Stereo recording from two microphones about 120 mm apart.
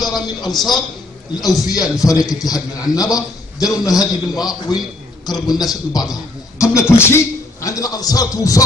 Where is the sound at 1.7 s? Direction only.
30° left (ahead or behind).